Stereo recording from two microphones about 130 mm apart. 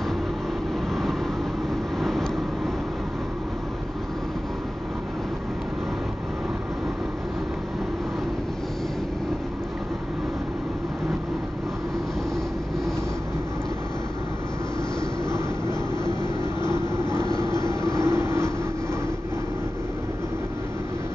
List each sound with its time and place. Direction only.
2.0 s vehicle: 5° left (ahead or behind)
16.6 s vehicle: 35° left (ahead or behind)
17.1 s vehicle: 5° left (ahead or behind)
17.5 s train: 35° left (ahead or behind)
18.0 s train: 20° right (ahead or behind)